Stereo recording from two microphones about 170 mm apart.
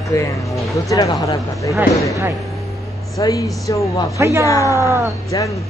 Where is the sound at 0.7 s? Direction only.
20° left (ahead or behind).